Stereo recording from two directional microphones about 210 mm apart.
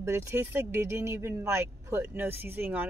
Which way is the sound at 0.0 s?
15° right (ahead or behind).